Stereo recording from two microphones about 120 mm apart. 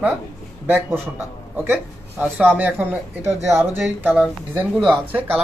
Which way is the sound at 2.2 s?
10° right (ahead or behind).